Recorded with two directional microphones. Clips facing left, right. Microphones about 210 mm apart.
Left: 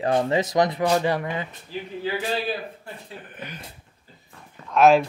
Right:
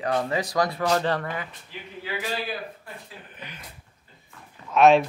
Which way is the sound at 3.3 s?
50° left (ahead or behind).